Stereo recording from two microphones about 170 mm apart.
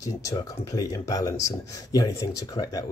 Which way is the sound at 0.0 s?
20° left (ahead or behind).